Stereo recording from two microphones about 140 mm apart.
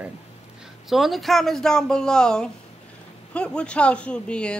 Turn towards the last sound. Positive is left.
turn(degrees=5)  # may be behind; listen again after turning